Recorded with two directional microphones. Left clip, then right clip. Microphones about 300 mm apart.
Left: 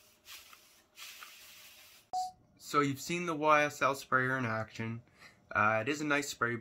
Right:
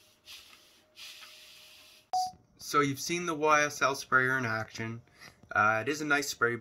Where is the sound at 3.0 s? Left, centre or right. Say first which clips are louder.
Right 2 dB; centre.